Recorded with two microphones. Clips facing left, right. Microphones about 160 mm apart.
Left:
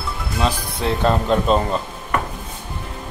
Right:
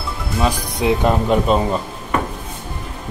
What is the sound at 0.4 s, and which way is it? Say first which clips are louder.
Speech: right 3 dB; 15° right (ahead or behind).